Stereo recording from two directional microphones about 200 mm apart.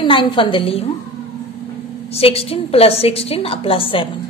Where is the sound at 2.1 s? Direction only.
30° left (ahead or behind).